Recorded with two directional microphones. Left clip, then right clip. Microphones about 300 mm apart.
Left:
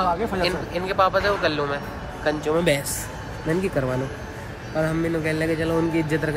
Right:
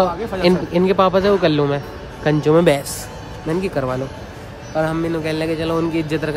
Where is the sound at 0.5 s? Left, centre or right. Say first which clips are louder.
Right 9 dB; centre.